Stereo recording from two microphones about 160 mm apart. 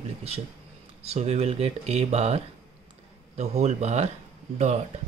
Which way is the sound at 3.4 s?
40° right (ahead or behind).